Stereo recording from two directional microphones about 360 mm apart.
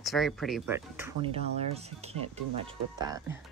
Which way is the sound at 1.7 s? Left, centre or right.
Centre.